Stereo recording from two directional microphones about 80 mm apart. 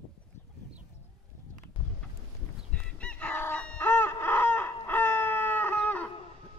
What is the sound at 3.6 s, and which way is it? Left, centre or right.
Chicken, left.